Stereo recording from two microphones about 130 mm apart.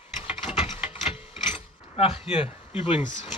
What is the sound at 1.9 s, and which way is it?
Speech, 50° left (ahead or behind).